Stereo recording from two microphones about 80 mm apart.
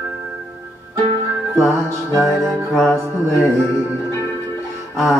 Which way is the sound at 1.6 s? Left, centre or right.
Centre.